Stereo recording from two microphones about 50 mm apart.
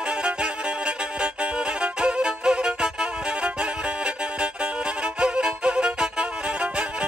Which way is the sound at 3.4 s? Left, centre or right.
Right.